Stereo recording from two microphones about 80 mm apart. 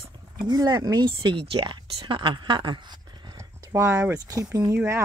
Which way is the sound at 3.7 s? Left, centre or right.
Right.